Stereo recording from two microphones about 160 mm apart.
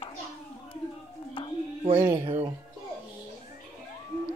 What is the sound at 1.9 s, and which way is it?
Speech, 15° right (ahead or behind).